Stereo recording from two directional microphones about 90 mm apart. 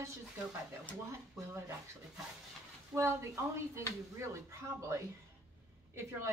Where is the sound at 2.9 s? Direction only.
30° right (ahead or behind).